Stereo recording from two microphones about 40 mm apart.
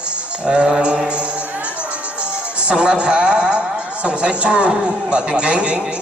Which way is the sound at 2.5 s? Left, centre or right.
Right.